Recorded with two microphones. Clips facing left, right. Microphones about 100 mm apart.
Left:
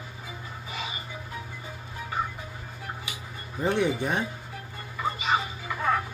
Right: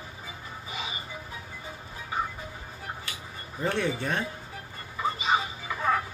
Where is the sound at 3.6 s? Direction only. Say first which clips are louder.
Left 3 dB; 15° left (ahead or behind).